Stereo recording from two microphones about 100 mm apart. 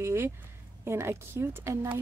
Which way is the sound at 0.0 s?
25° right (ahead or behind).